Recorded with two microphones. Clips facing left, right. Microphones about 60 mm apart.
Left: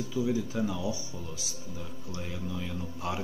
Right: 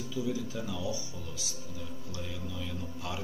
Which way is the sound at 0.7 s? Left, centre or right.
Left.